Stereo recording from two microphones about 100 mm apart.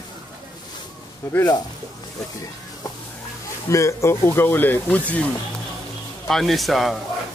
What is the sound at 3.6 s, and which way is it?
Speech, 30° left (ahead or behind).